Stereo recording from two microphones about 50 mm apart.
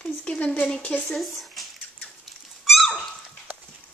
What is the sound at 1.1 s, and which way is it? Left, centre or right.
Speech, centre.